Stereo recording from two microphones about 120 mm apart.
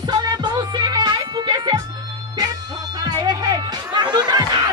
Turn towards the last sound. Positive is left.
turn(degrees=-35)  # may be behind; listen again after turning